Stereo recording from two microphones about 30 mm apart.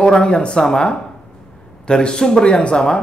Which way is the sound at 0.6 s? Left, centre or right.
Left.